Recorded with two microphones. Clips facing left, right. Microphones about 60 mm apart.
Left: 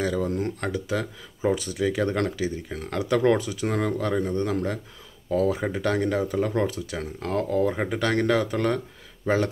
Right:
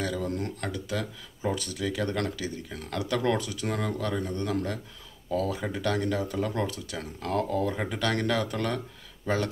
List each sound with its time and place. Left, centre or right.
0.2 s speech: centre